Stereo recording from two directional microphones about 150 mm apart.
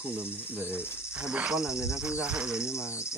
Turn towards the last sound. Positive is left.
turn(degrees=20)  # may be behind; listen again after turning